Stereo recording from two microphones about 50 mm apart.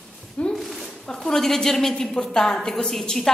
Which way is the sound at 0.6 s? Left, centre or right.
Centre.